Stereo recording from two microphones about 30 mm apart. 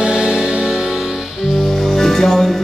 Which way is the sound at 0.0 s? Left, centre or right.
Right.